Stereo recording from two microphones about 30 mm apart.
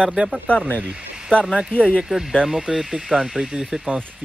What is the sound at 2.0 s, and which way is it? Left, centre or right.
Speech, centre.